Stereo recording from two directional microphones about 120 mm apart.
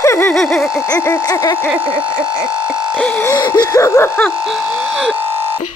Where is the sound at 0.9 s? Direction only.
25° left (ahead or behind).